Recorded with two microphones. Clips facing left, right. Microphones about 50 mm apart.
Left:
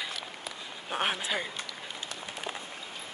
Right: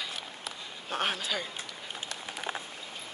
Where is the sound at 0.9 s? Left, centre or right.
Centre.